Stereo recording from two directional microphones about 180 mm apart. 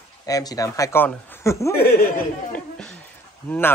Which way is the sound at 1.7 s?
60° left (ahead or behind).